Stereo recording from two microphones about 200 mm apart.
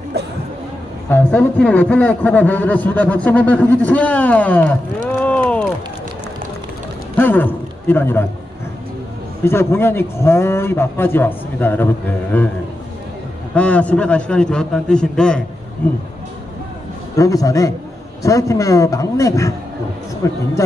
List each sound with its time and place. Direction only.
1.0 s a man's voice: 10° left (ahead or behind)
5.2 s a sound: 5° left (ahead or behind)
7.2 s a man's voice: 10° left (ahead or behind)
9.4 s a man's voice: 10° left (ahead or behind)
13.6 s a man's voice: 5° left (ahead or behind)
17.2 s a man's voice: 15° left (ahead or behind)